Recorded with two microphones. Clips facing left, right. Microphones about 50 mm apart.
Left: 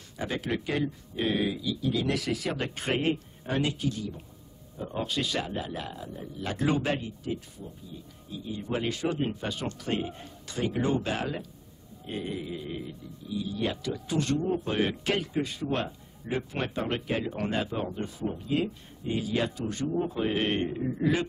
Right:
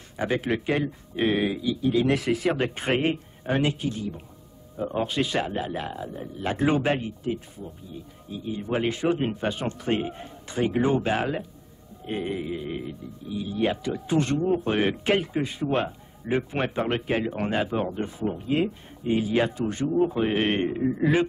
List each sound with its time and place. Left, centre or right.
0.2 s speech: right